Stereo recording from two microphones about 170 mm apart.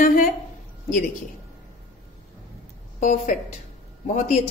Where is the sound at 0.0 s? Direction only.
55° left (ahead or behind).